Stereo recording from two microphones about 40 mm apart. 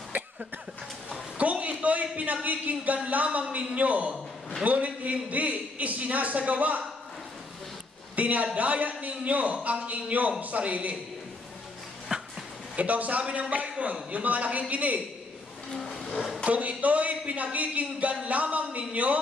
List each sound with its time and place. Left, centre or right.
1.4 s a sound: right
2.4 s a man's voice: right
8.2 s a man's voice: right
12.1 s a sound: right
12.7 s a man's voice: right
15.7 s vehicle: centre
16.4 s a man's voice: right